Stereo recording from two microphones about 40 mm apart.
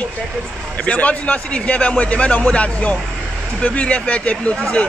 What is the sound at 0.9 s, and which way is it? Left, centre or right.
A man's voice, left.